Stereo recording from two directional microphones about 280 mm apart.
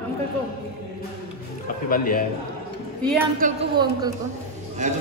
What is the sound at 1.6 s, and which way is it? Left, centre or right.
Speech, left.